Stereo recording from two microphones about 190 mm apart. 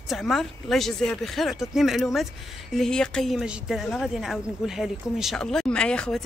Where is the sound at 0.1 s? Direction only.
Centre (ahead or behind).